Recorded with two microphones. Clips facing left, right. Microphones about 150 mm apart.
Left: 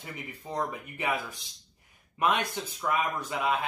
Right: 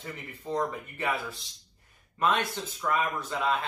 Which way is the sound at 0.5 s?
10° left (ahead or behind).